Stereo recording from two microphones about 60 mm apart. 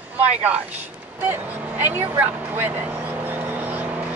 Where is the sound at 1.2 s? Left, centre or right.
Right.